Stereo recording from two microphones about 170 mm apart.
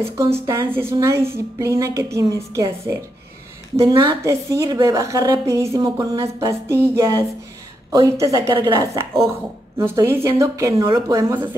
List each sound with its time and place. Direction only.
0.5 s a woman's voice: 15° right (ahead or behind)